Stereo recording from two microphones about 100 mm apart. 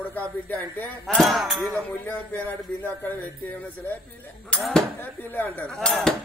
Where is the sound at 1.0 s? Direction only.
5° left (ahead or behind).